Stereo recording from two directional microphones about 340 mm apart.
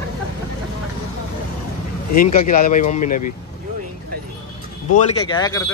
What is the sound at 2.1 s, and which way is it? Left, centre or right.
Speech, left.